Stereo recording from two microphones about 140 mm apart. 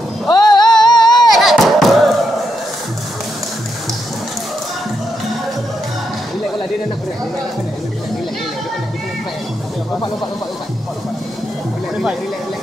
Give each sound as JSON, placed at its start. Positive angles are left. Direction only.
{"t": 0.3, "sound": "music", "side_deg": 30}
{"t": 1.3, "sound": "thump", "side_deg": 0}